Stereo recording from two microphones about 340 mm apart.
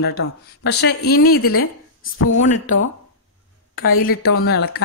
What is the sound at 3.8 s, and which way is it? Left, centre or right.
Speech, left.